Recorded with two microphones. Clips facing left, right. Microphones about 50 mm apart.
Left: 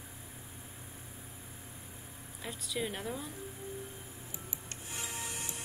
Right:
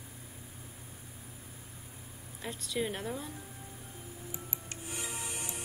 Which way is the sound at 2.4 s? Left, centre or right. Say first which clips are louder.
Right 2 dB; centre.